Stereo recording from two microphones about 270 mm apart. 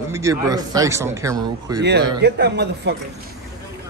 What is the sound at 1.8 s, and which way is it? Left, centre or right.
Speech, right.